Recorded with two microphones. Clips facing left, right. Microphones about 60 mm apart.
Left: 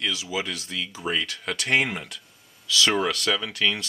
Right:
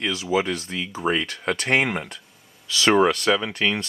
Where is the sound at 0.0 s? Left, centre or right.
Right.